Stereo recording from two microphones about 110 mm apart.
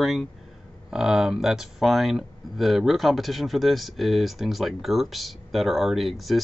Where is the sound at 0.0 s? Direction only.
Centre (ahead or behind).